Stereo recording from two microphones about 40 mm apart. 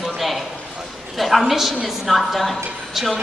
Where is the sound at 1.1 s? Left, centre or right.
Centre.